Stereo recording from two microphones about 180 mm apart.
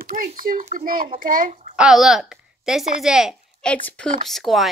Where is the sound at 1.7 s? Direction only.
5° right (ahead or behind).